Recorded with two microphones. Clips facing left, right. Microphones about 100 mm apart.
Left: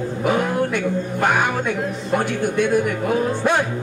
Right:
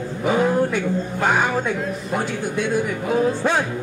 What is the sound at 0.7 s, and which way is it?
Speech, 60° left (ahead or behind).